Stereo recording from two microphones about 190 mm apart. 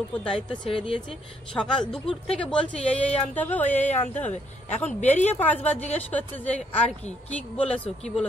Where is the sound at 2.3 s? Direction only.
5° left (ahead or behind).